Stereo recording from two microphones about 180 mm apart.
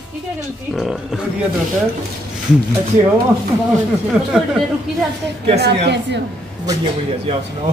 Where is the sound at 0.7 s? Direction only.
Centre (ahead or behind).